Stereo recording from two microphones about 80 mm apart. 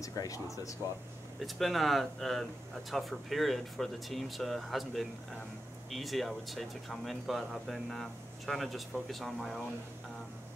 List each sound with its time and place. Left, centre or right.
0.0 s speech: left
1.4 s speech: centre